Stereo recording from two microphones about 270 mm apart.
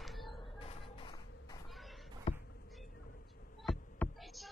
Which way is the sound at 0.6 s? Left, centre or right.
Left.